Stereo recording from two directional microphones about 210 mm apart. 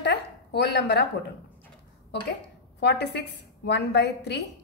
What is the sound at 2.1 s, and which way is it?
A woman's voice, 55° left (ahead or behind).